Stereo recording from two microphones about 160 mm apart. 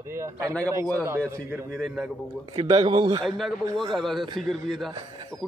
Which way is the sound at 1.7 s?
Centre (ahead or behind).